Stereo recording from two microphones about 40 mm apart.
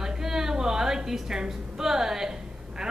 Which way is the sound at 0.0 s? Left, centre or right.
Centre.